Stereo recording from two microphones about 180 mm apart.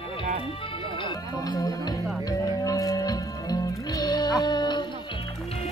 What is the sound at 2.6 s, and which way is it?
Music, 20° left (ahead or behind).